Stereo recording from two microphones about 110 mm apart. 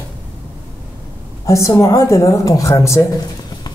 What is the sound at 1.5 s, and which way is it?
Speech, 30° left (ahead or behind).